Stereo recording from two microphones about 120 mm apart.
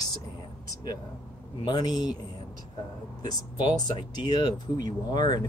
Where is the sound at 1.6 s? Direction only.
35° left (ahead or behind).